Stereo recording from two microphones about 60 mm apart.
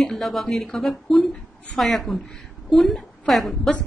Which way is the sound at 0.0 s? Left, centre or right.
Centre.